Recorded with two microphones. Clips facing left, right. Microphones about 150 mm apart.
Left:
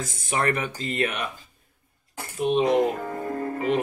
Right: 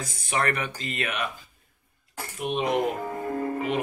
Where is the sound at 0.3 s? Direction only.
25° left (ahead or behind).